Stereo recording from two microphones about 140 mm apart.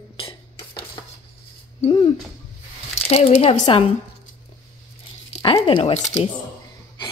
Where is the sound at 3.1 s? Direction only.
45° left (ahead or behind).